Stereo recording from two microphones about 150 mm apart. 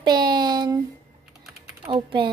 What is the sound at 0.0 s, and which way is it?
Speech, 30° right (ahead or behind).